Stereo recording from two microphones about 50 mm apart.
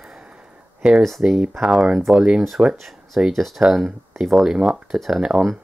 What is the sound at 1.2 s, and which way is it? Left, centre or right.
Speech, centre.